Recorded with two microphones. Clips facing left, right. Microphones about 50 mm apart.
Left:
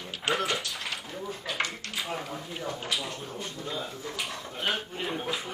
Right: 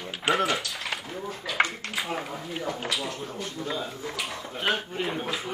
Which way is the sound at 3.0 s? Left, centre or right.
Centre.